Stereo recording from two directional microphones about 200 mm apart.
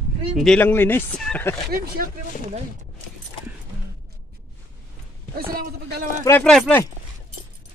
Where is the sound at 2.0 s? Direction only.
45° right (ahead or behind).